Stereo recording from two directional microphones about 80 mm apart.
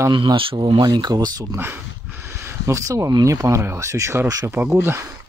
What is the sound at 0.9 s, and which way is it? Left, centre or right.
Speech, right.